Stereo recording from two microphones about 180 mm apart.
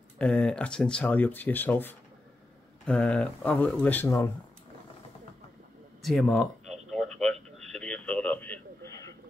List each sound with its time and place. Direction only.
0.2 s speech: 5° left (ahead or behind)
6.0 s a sound: centre (ahead or behind)
7.5 s radio: 5° left (ahead or behind)